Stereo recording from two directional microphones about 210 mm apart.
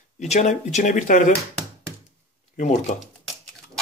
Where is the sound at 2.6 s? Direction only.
35° left (ahead or behind).